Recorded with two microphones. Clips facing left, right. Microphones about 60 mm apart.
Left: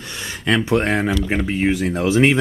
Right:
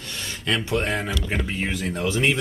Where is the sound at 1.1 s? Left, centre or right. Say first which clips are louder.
Left 7 dB; left.